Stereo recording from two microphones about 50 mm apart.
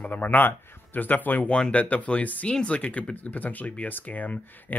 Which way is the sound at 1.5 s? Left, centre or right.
Left.